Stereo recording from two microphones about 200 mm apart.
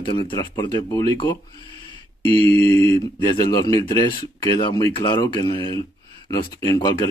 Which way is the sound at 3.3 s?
20° left (ahead or behind).